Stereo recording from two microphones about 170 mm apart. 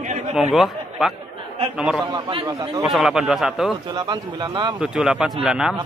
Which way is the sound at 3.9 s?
25° right (ahead or behind).